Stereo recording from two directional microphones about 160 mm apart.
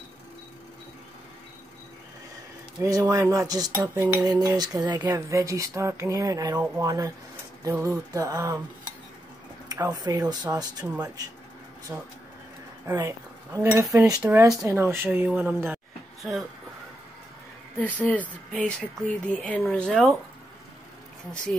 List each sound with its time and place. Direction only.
2.8 s cutlery: 20° right (ahead or behind)
9.7 s cutlery: 25° right (ahead or behind)
11.9 s cutlery: 20° right (ahead or behind)
12.8 s speech: 20° right (ahead or behind)
13.9 s cutlery: 20° right (ahead or behind)
14.2 s speech: 15° right (ahead or behind)
16.2 s speech: centre (ahead or behind)
17.7 s speech: 10° left (ahead or behind)